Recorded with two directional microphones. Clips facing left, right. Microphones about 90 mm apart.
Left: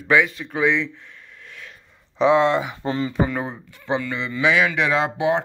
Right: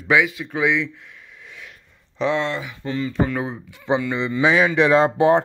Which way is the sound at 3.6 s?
15° right (ahead or behind).